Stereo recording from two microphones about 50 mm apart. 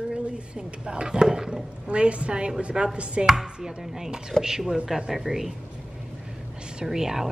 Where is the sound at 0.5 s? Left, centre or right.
Centre.